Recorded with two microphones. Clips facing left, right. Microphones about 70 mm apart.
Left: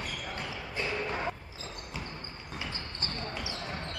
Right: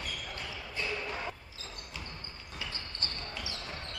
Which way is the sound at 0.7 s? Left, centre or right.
Left.